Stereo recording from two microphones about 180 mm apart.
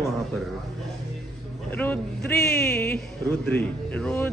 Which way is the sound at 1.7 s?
10° left (ahead or behind).